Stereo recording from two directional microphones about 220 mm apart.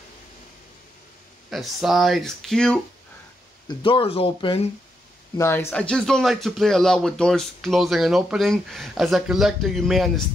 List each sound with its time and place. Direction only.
1.5 s speech: centre (ahead or behind)
3.6 s speech: 25° left (ahead or behind)
5.4 s speech: 10° left (ahead or behind)